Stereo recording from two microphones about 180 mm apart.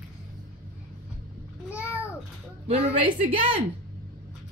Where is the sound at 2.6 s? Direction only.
35° right (ahead or behind).